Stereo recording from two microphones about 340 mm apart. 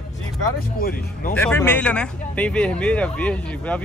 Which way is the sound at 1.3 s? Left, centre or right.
Centre.